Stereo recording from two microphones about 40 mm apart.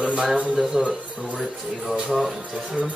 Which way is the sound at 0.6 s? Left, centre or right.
Centre.